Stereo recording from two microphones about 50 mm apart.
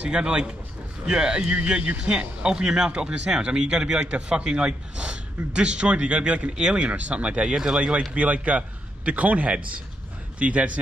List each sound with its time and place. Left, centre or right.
0.0 s a man's voice: centre